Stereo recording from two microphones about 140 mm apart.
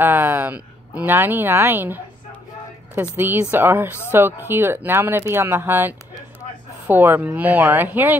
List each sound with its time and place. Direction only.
0.0 s a woman's voice: 15° right (ahead or behind)
3.0 s speech: 15° right (ahead or behind)